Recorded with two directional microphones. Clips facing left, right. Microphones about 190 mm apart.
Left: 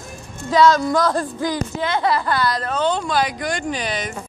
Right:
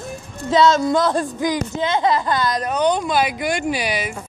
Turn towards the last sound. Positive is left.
turn(degrees=-10)  # may be behind; listen again after turning